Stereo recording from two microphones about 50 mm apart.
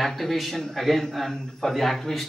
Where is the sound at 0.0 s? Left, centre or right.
Centre.